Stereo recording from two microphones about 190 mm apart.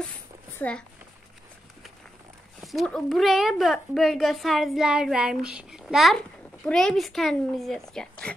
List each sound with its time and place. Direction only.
0.6 s speech: 5° left (ahead or behind)
2.6 s a woman's voice: centre (ahead or behind)